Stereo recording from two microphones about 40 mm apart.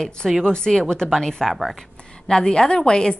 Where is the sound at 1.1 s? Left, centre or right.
Centre.